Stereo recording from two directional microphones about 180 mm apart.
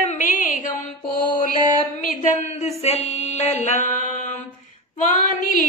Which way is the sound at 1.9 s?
45° left (ahead or behind).